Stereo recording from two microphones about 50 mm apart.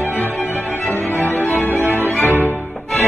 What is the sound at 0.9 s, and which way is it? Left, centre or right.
Music, left.